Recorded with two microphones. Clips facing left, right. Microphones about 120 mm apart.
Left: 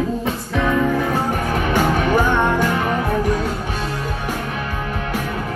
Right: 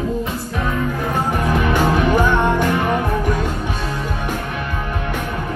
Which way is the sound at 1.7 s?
45° left (ahead or behind).